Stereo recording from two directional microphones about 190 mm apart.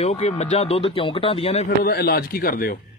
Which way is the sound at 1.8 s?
55° left (ahead or behind).